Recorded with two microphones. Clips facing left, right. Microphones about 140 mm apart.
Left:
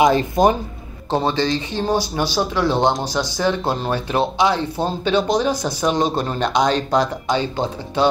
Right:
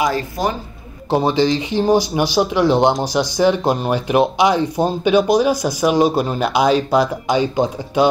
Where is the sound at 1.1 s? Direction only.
15° right (ahead or behind).